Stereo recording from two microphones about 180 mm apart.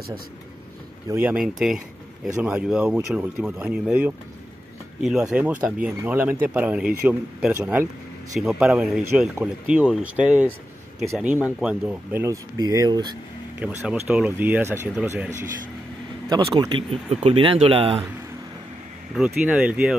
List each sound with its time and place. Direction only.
1.0 s speech: 10° right (ahead or behind)
5.3 s speech: 5° right (ahead or behind)
13.6 s speech: 5° right (ahead or behind)
16.3 s speech: 25° right (ahead or behind)
19.1 s speech: 5° right (ahead or behind)